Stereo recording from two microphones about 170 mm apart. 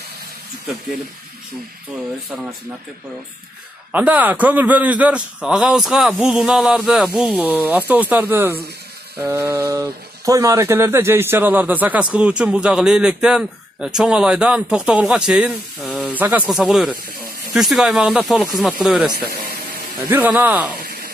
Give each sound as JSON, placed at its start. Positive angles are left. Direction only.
{"t": 3.9, "sound": "speech", "side_deg": -10}
{"t": 19.1, "sound": "speech", "side_deg": -65}
{"t": 20.0, "sound": "speech", "side_deg": -10}
{"t": 20.8, "sound": "a sound", "side_deg": -65}